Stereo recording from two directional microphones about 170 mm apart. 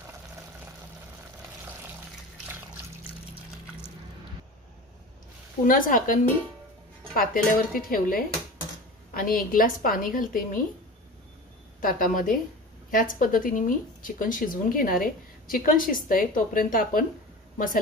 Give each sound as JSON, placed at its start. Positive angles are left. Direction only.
{"t": 5.7, "sound": "a woman's voice", "side_deg": 55}
{"t": 7.2, "sound": "a woman's voice", "side_deg": 55}
{"t": 11.8, "sound": "speech", "side_deg": 55}